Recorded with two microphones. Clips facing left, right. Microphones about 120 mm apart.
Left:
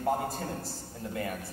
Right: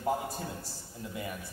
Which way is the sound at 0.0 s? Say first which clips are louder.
Left 2 dB; 50° left (ahead or behind).